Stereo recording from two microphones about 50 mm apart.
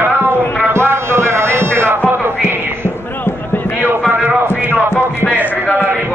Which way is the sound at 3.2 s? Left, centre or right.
Left.